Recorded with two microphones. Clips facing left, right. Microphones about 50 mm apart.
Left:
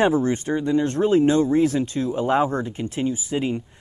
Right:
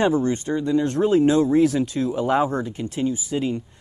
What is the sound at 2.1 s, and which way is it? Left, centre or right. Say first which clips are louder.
Speech: left 1 dB; centre.